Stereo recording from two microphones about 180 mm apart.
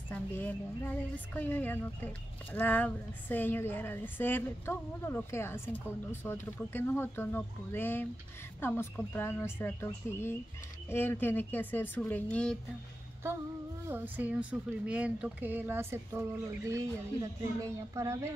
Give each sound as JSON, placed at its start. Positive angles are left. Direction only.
{"t": 0.1, "sound": "a woman's voice", "side_deg": 10}
{"t": 13.8, "sound": "speech", "side_deg": -10}